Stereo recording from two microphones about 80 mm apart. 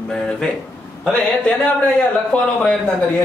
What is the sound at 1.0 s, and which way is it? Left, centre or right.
A woman's voice, centre.